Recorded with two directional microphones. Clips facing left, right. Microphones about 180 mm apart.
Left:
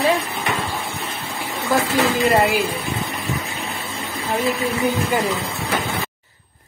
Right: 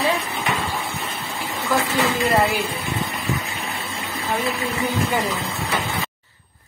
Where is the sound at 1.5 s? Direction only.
15° left (ahead or behind).